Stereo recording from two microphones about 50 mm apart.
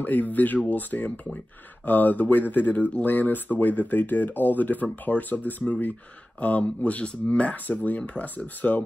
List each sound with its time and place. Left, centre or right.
0.0 s speech: left